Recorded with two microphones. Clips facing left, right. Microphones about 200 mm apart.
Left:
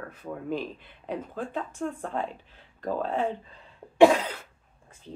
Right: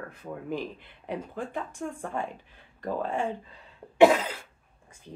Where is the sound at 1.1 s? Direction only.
15° right (ahead or behind).